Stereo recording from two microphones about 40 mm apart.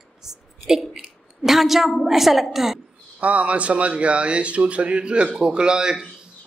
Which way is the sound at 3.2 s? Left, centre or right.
Right.